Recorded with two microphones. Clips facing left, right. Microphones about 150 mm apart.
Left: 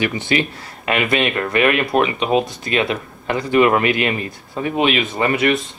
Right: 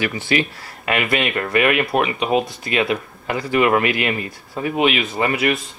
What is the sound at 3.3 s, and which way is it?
Speech, 30° left (ahead or behind).